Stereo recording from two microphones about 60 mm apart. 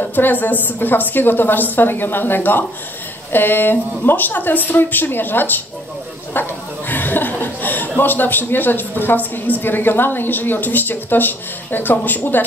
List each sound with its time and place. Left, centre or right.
0.0 s a woman's voice: left
6.3 s chuckle: left
8.0 s a woman's voice: left